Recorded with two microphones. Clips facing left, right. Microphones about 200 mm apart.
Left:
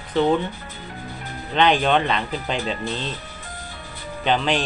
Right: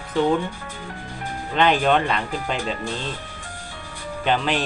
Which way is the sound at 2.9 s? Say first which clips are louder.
Left 1 dB; 45° right (ahead or behind).